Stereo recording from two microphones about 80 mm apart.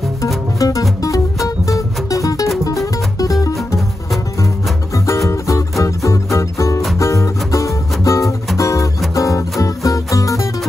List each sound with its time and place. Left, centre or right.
0.6 s music: left
4.9 s music: left